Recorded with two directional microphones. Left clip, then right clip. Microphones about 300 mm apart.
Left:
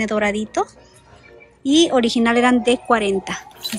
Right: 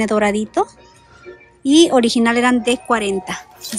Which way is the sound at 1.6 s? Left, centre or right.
Centre.